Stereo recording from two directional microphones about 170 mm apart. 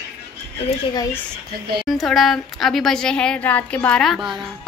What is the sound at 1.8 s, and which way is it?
A woman's voice, centre (ahead or behind).